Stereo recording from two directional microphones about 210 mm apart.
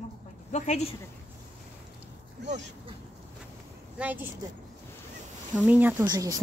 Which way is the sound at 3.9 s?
10° right (ahead or behind).